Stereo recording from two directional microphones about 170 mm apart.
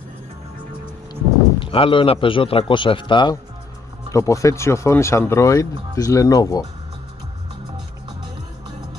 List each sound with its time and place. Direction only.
1.6 s a man's voice: 30° left (ahead or behind)